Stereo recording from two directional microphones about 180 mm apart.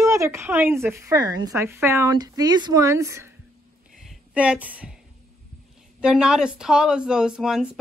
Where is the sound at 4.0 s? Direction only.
5° right (ahead or behind).